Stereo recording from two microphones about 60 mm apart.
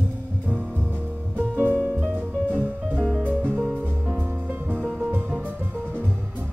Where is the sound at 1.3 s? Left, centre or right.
Right.